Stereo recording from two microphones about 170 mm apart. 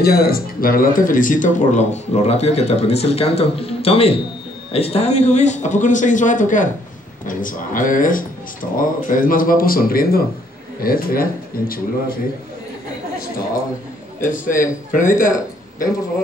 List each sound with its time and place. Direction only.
0.0 s speech: 60° left (ahead or behind)
14.9 s speech: 50° left (ahead or behind)